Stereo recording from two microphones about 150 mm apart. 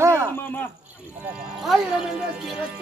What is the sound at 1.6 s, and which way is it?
Speech, 5° right (ahead or behind).